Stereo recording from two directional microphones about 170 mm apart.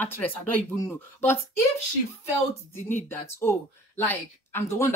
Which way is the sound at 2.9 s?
15° left (ahead or behind).